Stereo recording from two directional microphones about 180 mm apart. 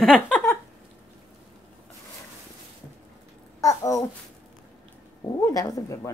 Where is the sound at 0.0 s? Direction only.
5° left (ahead or behind).